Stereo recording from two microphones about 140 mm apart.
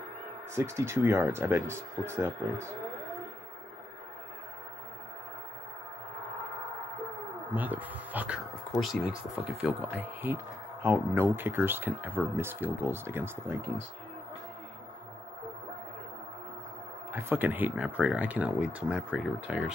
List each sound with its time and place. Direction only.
0.6 s speech: 20° right (ahead or behind)
7.5 s speech: 10° right (ahead or behind)
17.1 s speech: 15° right (ahead or behind)